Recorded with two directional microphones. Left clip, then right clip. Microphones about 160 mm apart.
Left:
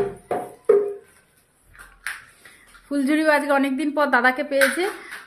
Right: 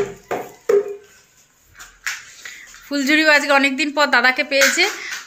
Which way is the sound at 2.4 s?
15° left (ahead or behind).